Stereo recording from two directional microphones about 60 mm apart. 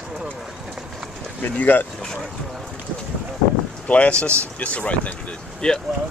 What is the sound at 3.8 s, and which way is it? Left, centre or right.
Speech, centre.